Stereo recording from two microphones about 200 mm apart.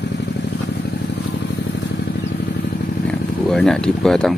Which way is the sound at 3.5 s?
Centre (ahead or behind).